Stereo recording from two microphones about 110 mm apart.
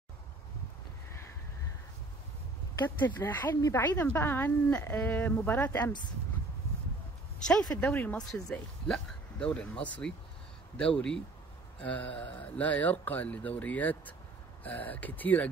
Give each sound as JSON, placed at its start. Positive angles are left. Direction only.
{"t": 3.3, "sound": "speech", "side_deg": 15}
{"t": 7.4, "sound": "speech", "side_deg": 10}